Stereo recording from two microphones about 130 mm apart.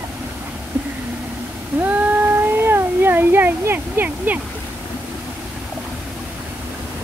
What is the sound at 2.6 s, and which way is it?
Speech, 15° right (ahead or behind).